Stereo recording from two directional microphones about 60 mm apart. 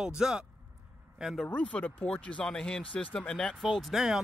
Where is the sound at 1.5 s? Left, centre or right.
Left.